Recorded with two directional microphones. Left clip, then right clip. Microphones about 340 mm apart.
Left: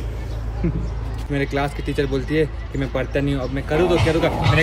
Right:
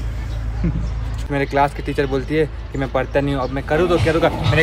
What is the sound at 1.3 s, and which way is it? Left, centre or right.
Speech, centre.